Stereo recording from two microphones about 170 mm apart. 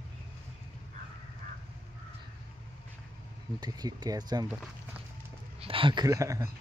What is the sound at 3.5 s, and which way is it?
Speech, 25° right (ahead or behind).